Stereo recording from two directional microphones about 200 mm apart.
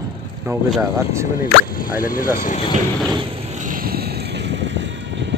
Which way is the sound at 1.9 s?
45° left (ahead or behind).